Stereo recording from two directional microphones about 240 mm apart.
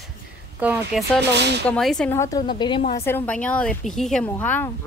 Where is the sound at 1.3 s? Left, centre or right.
Right.